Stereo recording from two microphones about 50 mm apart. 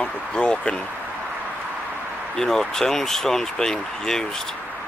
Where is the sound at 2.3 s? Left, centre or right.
Centre.